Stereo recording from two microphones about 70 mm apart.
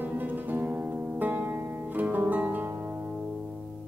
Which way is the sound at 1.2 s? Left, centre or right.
Right.